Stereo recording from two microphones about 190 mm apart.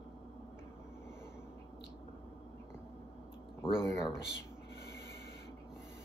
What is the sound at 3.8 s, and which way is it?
Speech, 15° left (ahead or behind).